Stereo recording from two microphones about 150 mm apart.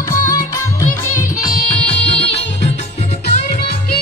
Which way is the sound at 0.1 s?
70° left (ahead or behind).